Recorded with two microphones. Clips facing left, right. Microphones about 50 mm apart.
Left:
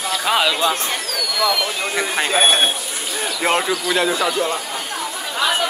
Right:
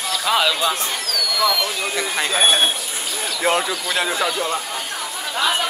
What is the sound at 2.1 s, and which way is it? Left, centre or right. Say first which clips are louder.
Speech: left 2 dB; centre.